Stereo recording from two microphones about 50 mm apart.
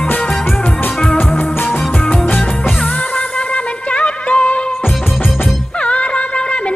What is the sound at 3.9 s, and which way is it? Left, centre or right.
Music, left.